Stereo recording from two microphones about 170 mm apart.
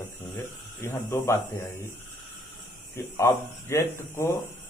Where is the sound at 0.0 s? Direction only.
15° left (ahead or behind).